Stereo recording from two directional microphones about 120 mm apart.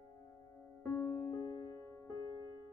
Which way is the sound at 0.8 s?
20° left (ahead or behind).